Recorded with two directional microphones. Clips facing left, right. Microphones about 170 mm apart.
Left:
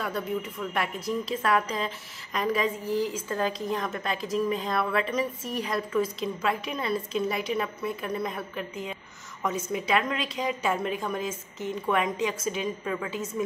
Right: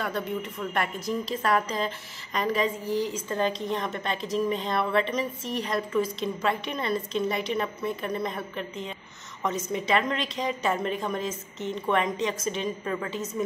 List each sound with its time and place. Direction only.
0.0 s a woman's voice: 5° left (ahead or behind)